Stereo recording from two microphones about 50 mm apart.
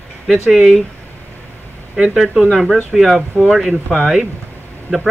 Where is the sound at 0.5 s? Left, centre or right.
Centre.